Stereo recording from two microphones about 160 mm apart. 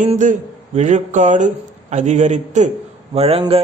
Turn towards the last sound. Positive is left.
turn(degrees=-40)  # may be behind; listen again after turning